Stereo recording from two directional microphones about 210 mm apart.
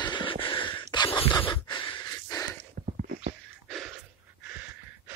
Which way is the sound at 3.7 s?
Centre (ahead or behind).